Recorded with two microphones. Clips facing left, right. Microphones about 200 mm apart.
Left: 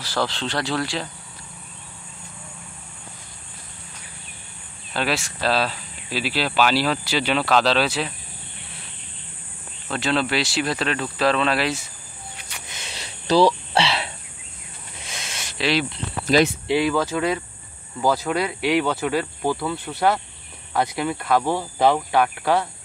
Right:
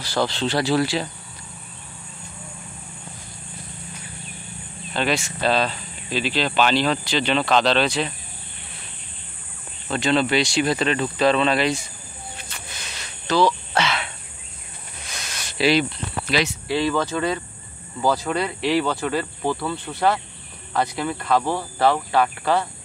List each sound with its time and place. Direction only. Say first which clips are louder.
0.0 s speech: right 3 dB; centre (ahead or behind)
4.9 s speech: right 2 dB; 5° left (ahead or behind)
9.8 s speech: right 3 dB; centre (ahead or behind)
12.4 s a sound: right 1 dB; 15° left (ahead or behind)
12.9 s cricket: left 3 dB; 35° left (ahead or behind)
15.0 s a sound: left 1 dB; 25° left (ahead or behind)
15.5 s speech: right 4 dB; centre (ahead or behind)
16.3 s speech: left 6 dB; 45° left (ahead or behind)
16.6 s speech: left 1 dB; 10° left (ahead or behind)